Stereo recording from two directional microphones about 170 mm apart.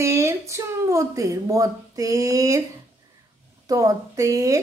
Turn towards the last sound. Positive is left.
turn(degrees=-20)  # may be behind; listen again after turning